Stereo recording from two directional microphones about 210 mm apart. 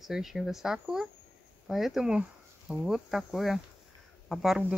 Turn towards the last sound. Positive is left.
turn(degrees=-5)  # may be behind; listen again after turning